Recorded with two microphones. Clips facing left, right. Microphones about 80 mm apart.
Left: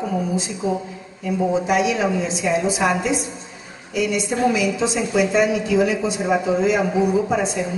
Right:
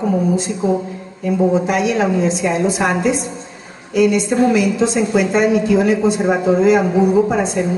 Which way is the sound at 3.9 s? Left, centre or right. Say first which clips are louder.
Right 7 dB; right.